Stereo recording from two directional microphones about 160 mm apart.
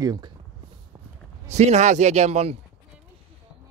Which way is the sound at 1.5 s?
45° right (ahead or behind).